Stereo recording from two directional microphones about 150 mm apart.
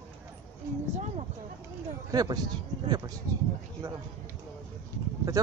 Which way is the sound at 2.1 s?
25° right (ahead or behind).